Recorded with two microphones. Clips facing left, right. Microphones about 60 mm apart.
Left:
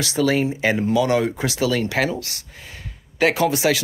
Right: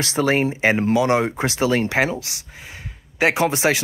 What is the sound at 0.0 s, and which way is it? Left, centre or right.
Speech, right.